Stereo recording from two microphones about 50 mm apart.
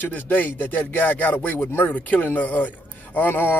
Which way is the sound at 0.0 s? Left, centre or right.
Left.